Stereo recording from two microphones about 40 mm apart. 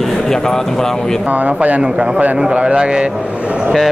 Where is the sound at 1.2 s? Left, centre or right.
Right.